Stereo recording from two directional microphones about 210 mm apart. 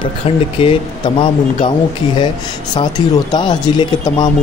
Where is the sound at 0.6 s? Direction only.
25° left (ahead or behind).